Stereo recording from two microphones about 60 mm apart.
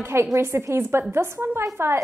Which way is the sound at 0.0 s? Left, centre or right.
Right.